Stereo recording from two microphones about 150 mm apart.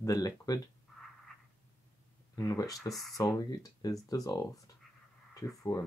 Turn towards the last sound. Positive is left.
turn(degrees=20)  # may be behind; listen again after turning